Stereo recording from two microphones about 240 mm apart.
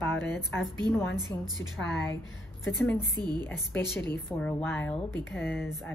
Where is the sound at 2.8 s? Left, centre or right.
Centre.